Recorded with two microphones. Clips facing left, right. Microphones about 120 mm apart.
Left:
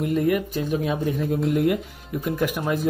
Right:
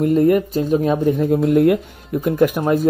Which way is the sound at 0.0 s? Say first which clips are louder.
Right 7 dB; 40° right (ahead or behind).